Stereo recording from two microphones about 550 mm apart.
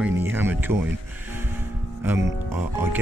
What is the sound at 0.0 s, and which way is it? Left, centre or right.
Music, centre.